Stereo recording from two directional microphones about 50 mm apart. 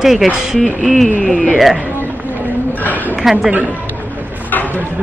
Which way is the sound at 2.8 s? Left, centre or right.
Left.